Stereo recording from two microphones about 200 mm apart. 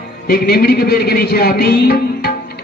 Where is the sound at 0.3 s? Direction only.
50° left (ahead or behind).